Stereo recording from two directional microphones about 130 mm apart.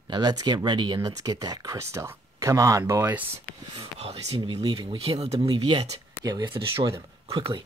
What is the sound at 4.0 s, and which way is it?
Speech, 50° right (ahead or behind).